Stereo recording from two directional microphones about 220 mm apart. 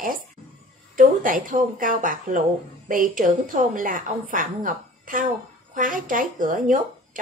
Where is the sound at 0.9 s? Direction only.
40° right (ahead or behind).